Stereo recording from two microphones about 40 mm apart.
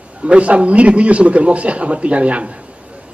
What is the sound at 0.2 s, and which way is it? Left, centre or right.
A man's voice, right.